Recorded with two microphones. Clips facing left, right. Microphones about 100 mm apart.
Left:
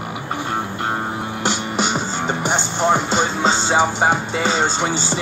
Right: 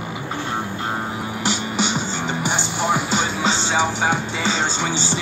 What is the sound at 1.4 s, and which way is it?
Music, 45° left (ahead or behind).